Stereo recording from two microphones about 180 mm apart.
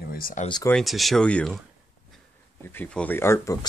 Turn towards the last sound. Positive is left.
turn(degrees=20)  # may be behind; listen again after turning